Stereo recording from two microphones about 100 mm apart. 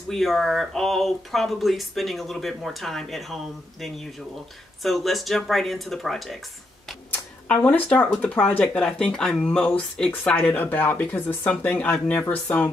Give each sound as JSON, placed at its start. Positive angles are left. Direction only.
{"t": 0.1, "sound": "speech", "side_deg": 0}
{"t": 4.8, "sound": "speech", "side_deg": 0}
{"t": 7.1, "sound": "speech", "side_deg": 15}